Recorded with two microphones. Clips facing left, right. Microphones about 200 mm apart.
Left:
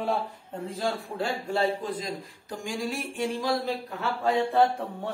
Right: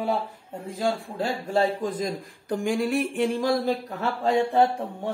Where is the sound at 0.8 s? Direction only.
20° right (ahead or behind).